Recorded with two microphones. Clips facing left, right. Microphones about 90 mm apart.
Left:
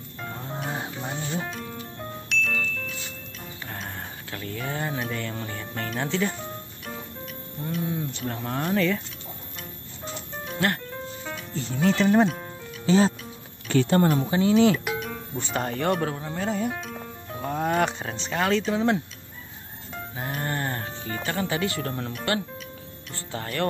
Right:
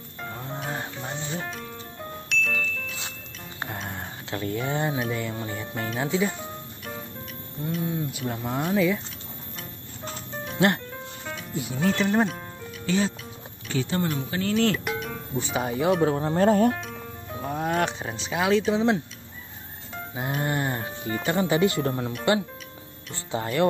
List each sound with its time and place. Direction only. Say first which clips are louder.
0.2 s music: even; centre (ahead or behind)
3.9 s a sound: right 3 dB; 25° right (ahead or behind)
5.1 s music: right 2 dB; 15° right (ahead or behind)
7.6 s speech: right 1 dB; centre (ahead or behind)
10.9 s music: left 2 dB; centre (ahead or behind)
11.5 s speech: left 2 dB; 10° right (ahead or behind)
12.8 s speech: left 5 dB; 30° left (ahead or behind)
13.7 s speech: left 6 dB; 55° left (ahead or behind)
14.5 s speech: left 3 dB; 5° left (ahead or behind)
16.2 s speech: right 8 dB; 40° right (ahead or behind)
16.7 s music: even; centre (ahead or behind)
20.2 s music: right 3 dB; 10° right (ahead or behind)
23.1 s speech: right 5 dB; 20° right (ahead or behind)